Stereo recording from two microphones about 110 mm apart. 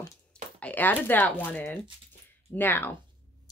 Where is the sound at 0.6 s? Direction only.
15° left (ahead or behind).